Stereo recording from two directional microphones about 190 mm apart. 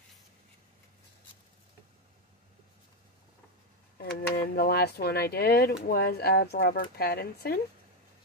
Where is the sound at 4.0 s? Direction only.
55° left (ahead or behind).